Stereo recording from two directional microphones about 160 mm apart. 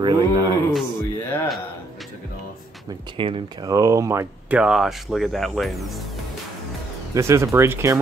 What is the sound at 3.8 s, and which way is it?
Speech, 20° right (ahead or behind).